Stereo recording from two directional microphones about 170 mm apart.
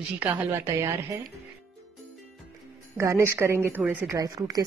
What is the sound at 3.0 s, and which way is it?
A woman's voice, 15° right (ahead or behind).